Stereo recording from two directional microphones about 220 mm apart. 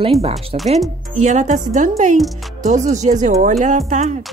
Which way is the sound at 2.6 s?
35° right (ahead or behind).